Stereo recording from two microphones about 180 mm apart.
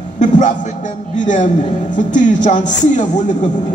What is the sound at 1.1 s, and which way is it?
A man's voice, 45° left (ahead or behind).